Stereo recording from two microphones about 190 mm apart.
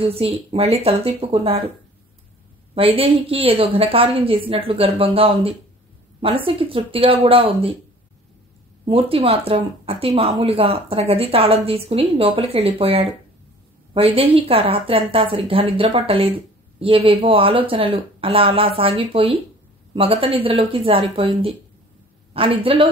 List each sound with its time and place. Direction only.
0.0 s speech: 30° right (ahead or behind)
2.7 s a woman's voice: 30° right (ahead or behind)
8.8 s a woman's voice: 30° right (ahead or behind)